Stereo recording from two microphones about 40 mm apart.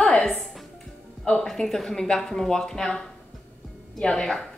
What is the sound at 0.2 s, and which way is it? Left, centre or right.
Music, centre.